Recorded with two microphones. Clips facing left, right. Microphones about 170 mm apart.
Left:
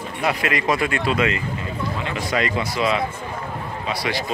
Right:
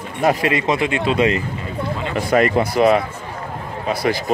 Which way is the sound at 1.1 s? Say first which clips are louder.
Right 6 dB; 35° right (ahead or behind).